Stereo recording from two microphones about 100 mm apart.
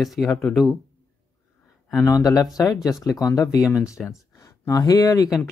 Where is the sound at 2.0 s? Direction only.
40° left (ahead or behind).